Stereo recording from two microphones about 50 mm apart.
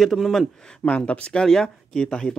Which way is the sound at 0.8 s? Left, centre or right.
Left.